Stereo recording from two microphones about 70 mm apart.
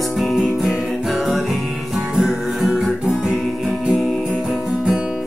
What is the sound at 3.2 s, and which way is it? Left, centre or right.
Music, centre.